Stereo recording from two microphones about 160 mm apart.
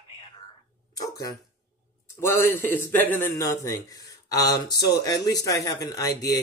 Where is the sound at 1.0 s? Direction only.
20° left (ahead or behind).